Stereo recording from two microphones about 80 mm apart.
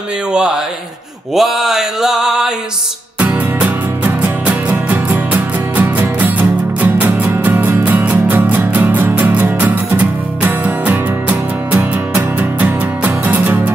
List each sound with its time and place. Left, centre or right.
0.3 s speech: centre
1.3 s mantra: centre
3.2 s music: centre